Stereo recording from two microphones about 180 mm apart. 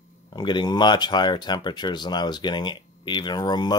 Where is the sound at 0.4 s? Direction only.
25° left (ahead or behind).